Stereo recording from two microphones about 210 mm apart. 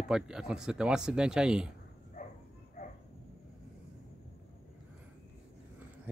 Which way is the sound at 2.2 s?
40° left (ahead or behind).